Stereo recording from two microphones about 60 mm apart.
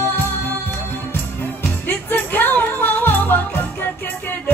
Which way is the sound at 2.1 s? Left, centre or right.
Left.